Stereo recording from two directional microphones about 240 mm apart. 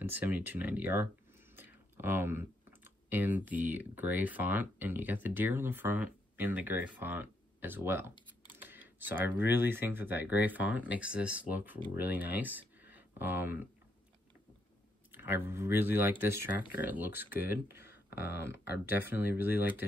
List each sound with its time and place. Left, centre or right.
0.0 s speech: centre
15.0 s speech: centre
17.8 s speech: left
19.3 s speech: centre